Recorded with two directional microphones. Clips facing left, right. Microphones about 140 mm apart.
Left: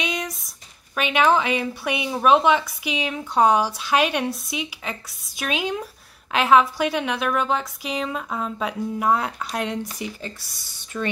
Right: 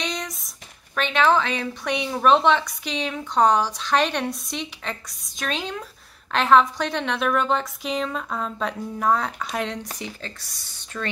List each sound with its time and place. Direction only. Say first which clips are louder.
0.0 s a woman's voice: left 2 dB; 5° left (ahead or behind)
10.9 s speech: left 4 dB; 10° left (ahead or behind)